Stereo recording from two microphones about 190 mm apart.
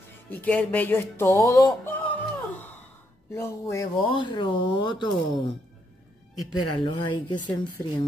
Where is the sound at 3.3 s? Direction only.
15° left (ahead or behind).